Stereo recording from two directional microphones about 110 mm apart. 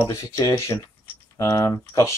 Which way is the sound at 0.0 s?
30° left (ahead or behind).